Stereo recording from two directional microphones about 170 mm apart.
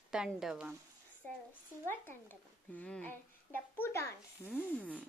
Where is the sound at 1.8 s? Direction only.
10° left (ahead or behind).